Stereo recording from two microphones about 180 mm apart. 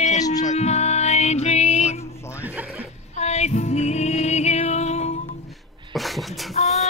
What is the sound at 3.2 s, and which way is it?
Music, 40° left (ahead or behind).